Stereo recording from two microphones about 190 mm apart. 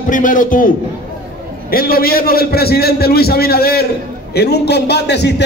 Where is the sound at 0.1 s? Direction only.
45° left (ahead or behind).